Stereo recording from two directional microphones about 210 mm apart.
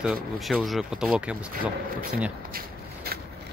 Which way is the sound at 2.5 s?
45° right (ahead or behind).